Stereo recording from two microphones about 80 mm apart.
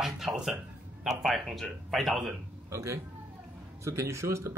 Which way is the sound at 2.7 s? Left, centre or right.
Right.